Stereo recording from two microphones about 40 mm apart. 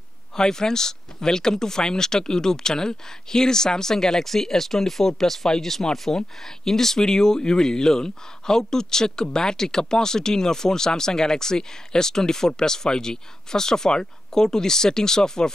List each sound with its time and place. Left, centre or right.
0.4 s speech: centre
6.1 s speech: left
6.4 s speech: centre